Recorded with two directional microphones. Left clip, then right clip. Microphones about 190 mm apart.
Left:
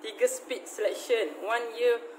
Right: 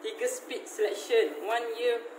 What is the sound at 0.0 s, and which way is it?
Speech, 60° left (ahead or behind).